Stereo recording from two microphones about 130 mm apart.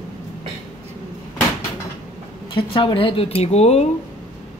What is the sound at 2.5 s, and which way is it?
A woman's voice, 40° left (ahead or behind).